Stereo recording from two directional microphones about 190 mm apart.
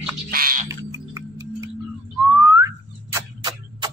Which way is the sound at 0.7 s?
15° right (ahead or behind).